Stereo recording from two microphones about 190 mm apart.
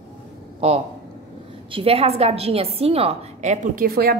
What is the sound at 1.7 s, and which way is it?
Speech, 30° right (ahead or behind).